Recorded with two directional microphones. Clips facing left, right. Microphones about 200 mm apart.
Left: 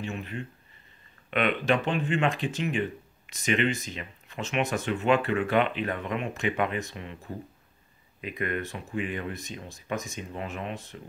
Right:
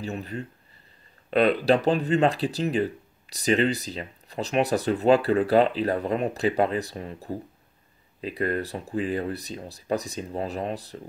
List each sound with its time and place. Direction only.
0.0 s speech: 40° right (ahead or behind)